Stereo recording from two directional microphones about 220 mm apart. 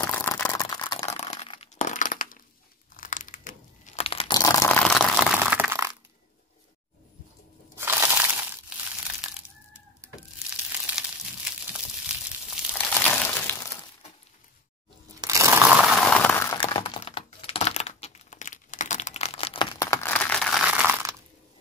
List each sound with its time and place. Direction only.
0.0 s a sound: 10° left (ahead or behind); by 2.4 s 35° left (ahead or behind)
3.0 s crumpling: 35° left (ahead or behind); by 5.9 s 10° right (ahead or behind)
7.7 s crushing: 10° right (ahead or behind)
10.7 s crumpling: 5° right (ahead or behind)
12.4 s a sound: 5° left (ahead or behind)
15.1 s crushing: 15° right (ahead or behind); by 16.5 s 10° left (ahead or behind)
16.5 s crumpling: 20° left (ahead or behind); by 21.1 s 5° right (ahead or behind)